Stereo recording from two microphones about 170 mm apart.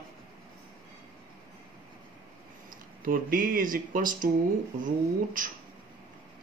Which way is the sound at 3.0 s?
55° right (ahead or behind).